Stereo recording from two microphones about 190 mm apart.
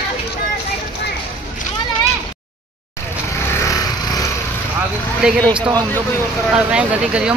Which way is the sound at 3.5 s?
15° left (ahead or behind).